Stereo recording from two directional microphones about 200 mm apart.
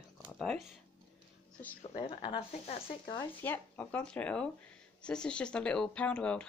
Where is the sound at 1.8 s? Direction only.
25° left (ahead or behind).